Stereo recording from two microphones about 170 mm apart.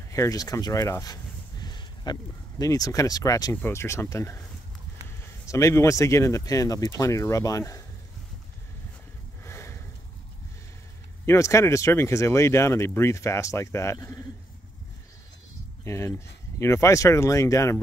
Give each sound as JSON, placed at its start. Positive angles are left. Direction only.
{"t": 0.1, "sound": "a sound", "side_deg": 20}
{"t": 2.6, "sound": "speech", "side_deg": 20}
{"t": 9.4, "sound": "sniff", "side_deg": 15}
{"t": 11.2, "sound": "speech", "side_deg": 15}
{"t": 15.8, "sound": "speech", "side_deg": 15}